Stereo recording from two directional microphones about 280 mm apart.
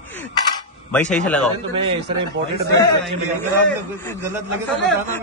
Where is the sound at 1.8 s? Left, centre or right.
Centre.